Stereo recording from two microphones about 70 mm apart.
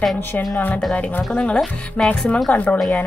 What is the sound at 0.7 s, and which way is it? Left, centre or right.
Speech, centre.